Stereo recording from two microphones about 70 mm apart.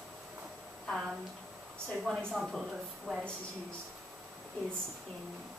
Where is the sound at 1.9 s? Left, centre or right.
Centre.